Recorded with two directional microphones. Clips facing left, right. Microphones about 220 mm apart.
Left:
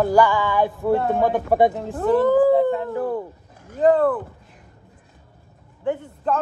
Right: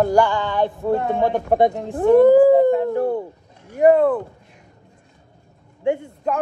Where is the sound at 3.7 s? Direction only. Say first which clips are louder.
Right 3 dB; 15° right (ahead or behind).